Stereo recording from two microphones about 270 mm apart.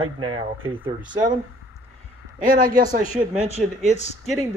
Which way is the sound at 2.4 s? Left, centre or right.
Right.